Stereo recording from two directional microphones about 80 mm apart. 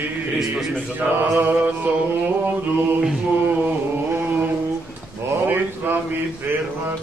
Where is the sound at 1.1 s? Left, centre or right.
Right.